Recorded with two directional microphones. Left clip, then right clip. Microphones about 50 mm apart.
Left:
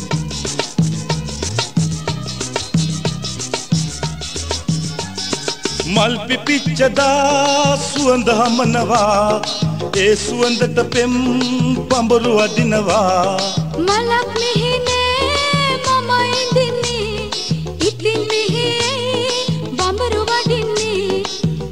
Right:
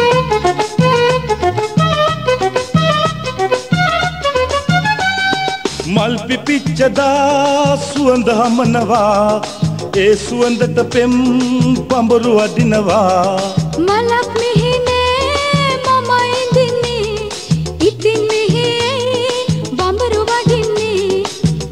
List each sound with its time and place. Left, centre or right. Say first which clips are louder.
6.8 s music: right 2 dB; centre
14.5 s music of bollywood: right 3 dB; centre
16.3 s music: right 3 dB; left
17.8 s music: right 4 dB; left